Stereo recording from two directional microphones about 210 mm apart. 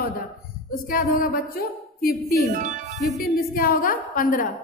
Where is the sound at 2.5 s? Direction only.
40° right (ahead or behind).